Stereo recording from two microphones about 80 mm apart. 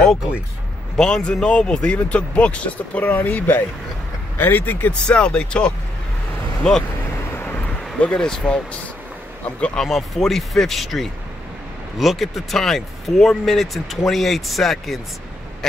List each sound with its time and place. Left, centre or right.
0.9 s speech: centre
7.3 s vehicle: left
8.0 s speech: centre